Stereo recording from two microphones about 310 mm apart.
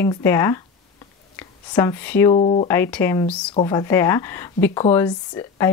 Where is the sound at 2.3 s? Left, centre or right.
Centre.